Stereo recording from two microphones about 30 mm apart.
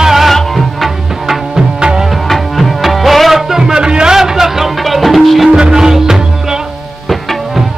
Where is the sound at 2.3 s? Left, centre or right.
Centre.